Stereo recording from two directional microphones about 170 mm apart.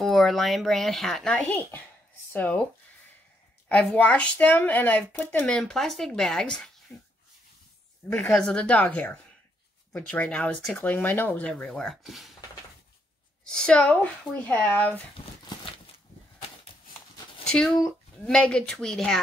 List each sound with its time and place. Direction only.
0.0 s speech: centre (ahead or behind)
3.6 s speech: 10° left (ahead or behind)
8.1 s speech: 5° left (ahead or behind)
13.5 s speech: 5° left (ahead or behind)
17.5 s speech: 5° left (ahead or behind)